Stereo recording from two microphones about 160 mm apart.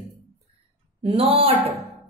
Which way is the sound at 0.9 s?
35° right (ahead or behind).